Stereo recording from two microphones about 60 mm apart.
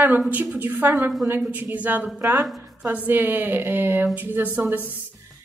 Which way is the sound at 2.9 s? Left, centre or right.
Right.